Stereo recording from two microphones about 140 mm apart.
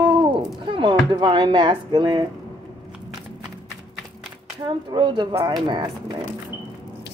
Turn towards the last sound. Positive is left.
turn(degrees=-35)  # may be behind; listen again after turning